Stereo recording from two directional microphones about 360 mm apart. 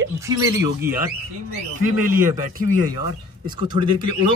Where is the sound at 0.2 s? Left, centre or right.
Centre.